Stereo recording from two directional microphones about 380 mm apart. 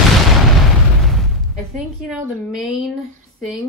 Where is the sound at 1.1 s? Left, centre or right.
Centre.